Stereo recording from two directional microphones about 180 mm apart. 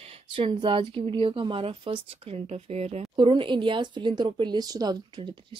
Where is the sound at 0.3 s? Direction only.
25° right (ahead or behind).